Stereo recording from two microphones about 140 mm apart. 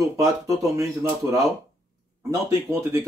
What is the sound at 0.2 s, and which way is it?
Speech, 20° right (ahead or behind).